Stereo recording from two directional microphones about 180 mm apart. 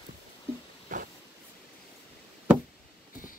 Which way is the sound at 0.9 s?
45° right (ahead or behind).